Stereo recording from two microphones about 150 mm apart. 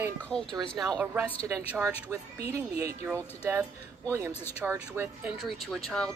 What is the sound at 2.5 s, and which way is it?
Speech, 20° right (ahead or behind).